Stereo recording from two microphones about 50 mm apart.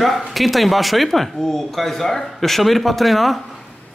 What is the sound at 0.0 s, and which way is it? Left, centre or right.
Speech, centre.